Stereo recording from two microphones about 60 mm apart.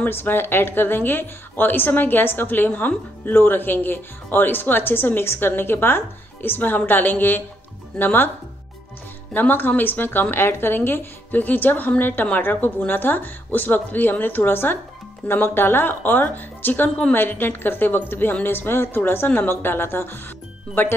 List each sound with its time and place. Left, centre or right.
0.0 s speech: left
9.3 s speech: left